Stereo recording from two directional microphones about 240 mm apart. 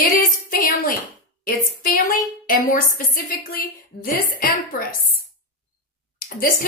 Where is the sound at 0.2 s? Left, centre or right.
Left.